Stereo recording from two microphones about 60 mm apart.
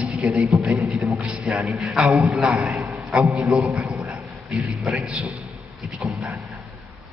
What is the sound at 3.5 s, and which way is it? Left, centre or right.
Speech, centre.